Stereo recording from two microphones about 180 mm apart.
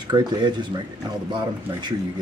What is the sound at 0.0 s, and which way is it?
Speech, 25° right (ahead or behind).